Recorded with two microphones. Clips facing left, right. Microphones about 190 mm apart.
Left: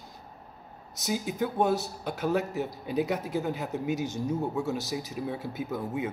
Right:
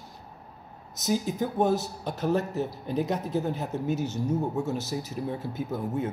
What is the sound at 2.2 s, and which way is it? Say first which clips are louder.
A man's voice: right 2 dB; 10° left (ahead or behind).